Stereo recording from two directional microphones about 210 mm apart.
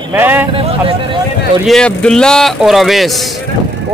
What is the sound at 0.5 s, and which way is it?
Speech, 25° right (ahead or behind).